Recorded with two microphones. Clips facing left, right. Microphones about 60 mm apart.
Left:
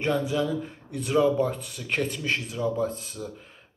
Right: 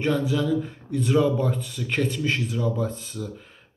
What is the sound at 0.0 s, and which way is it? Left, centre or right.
A man's voice, centre.